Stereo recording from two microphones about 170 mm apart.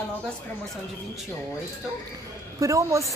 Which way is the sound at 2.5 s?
20° right (ahead or behind).